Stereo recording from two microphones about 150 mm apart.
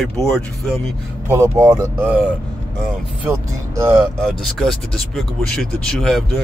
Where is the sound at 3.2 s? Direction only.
15° right (ahead or behind).